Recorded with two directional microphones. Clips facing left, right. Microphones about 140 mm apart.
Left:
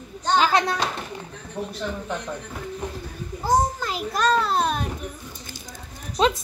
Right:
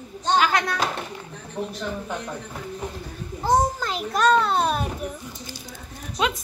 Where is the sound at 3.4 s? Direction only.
Centre (ahead or behind).